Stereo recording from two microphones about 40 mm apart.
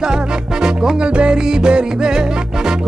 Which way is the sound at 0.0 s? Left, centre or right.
Centre.